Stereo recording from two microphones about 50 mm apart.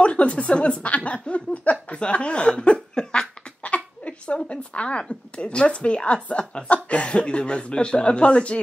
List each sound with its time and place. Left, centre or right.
0.0 s speech: left
3.6 s a sound: left
5.0 s speech: left